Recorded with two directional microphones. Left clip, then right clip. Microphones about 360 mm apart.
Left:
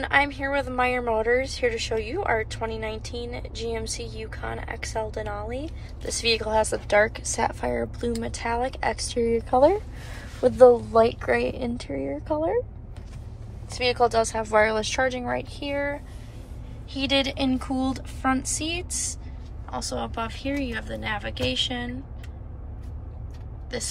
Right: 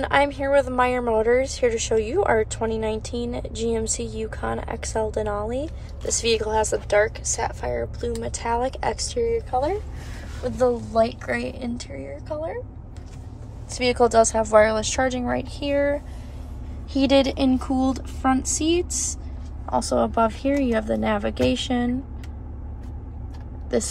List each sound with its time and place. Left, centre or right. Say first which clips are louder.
0.0 s a woman's voice: right 2 dB; centre
13.7 s a woman's voice: right 2 dB; centre